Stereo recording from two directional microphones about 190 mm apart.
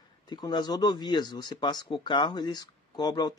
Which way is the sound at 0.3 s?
20° left (ahead or behind).